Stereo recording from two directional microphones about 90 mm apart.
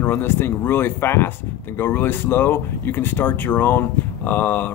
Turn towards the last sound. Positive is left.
turn(degrees=20)  # may be behind; listen again after turning